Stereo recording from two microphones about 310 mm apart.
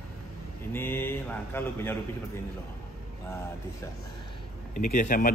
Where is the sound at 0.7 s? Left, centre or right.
Centre.